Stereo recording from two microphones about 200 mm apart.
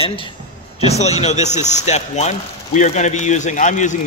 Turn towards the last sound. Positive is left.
turn(degrees=40)  # may be behind; listen again after turning